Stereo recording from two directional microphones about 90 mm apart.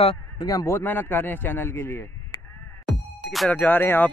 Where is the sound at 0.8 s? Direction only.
20° left (ahead or behind).